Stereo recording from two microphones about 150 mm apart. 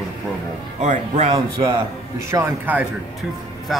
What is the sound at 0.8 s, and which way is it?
Speech, 50° right (ahead or behind).